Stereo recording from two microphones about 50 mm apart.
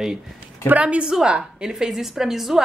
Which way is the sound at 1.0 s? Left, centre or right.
Centre.